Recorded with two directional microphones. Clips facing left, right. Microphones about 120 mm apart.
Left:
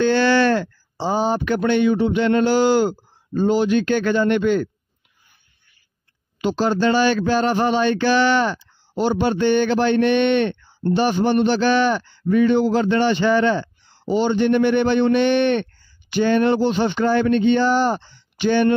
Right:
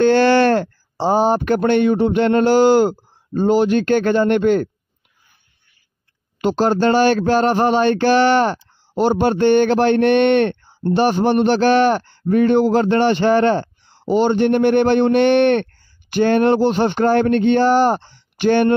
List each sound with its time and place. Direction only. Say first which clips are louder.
0.0 s a man's voice: right 4 dB; 50° right (ahead or behind)
6.4 s a man's voice: right 3 dB; 50° right (ahead or behind)